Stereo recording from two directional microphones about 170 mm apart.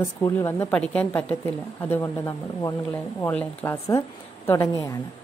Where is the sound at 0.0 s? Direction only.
15° left (ahead or behind).